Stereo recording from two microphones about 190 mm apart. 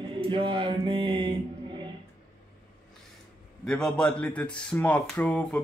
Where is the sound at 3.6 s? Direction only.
5° left (ahead or behind).